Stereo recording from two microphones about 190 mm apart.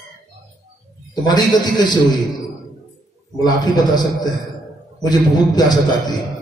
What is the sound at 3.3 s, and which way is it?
Speech, 20° left (ahead or behind).